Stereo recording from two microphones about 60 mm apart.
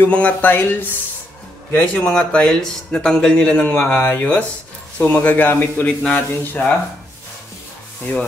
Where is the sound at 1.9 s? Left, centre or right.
Centre.